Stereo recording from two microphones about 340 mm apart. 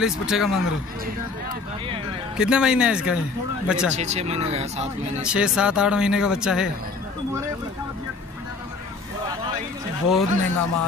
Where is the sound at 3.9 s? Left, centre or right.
Centre.